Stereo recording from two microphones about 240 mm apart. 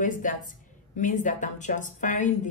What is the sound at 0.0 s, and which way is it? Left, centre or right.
A woman's voice, left.